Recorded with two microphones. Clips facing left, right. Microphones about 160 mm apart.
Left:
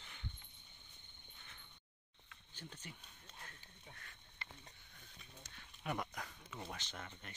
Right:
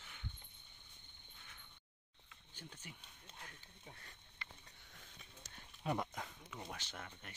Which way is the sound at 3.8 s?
25° right (ahead or behind).